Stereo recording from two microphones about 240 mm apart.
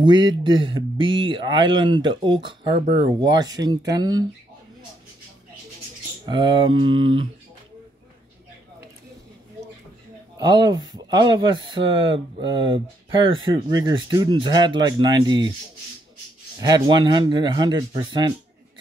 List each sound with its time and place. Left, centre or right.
0.0 s speech: centre
6.2 s speech: centre
10.3 s speech: centre
16.5 s speech: centre